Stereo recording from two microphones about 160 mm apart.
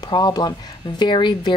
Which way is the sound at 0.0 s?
25° left (ahead or behind).